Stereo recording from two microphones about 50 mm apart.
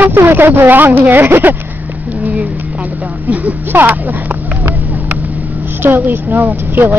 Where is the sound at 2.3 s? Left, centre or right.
Right.